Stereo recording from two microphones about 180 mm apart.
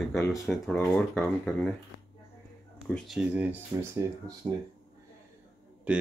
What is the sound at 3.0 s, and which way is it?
Speech, 5° right (ahead or behind).